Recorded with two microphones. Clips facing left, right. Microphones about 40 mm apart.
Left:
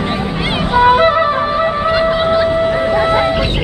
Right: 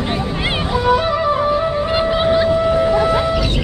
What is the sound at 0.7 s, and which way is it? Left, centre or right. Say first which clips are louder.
Music: left 7 dB; left.